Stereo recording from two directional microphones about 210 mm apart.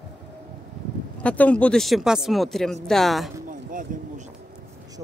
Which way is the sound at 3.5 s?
40° right (ahead or behind).